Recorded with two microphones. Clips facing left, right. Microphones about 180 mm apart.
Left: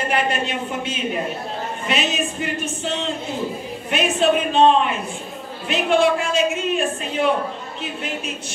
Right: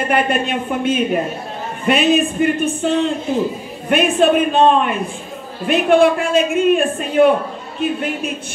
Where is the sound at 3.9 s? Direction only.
55° right (ahead or behind).